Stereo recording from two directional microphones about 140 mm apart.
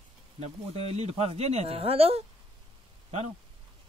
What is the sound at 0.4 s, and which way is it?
Speech, 50° right (ahead or behind).